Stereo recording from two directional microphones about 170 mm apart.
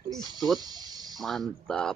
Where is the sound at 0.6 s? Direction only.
25° right (ahead or behind).